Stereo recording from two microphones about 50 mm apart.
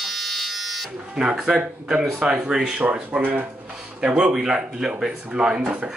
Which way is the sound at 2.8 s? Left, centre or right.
Right.